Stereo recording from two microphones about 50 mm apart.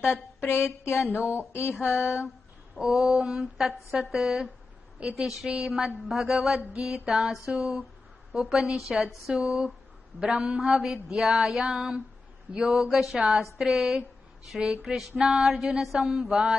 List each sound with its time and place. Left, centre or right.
0.0 s a sound: left
2.8 s mantra: centre
3.5 s a woman's voice: centre
4.1 s mantra: centre
7.4 s a man's voice: centre
8.3 s mantra: centre
9.4 s a man's voice: right
10.6 s mantra: centre